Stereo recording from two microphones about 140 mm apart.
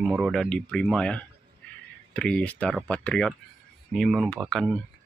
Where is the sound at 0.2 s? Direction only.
Centre (ahead or behind).